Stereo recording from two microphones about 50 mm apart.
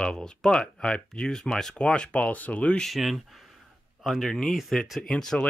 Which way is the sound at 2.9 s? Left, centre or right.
Centre.